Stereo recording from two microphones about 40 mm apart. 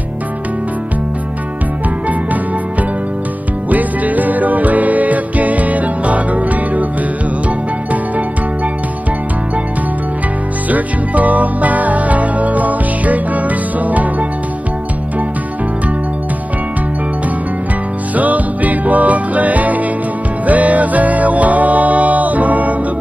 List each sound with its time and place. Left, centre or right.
3.7 s music: right
10.7 s music: right
18.1 s music: right